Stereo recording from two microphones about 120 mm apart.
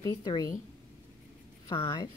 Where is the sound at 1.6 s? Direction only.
45° left (ahead or behind).